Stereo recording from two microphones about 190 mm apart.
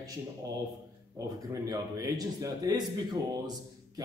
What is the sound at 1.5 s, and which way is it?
A man's voice, 20° right (ahead or behind).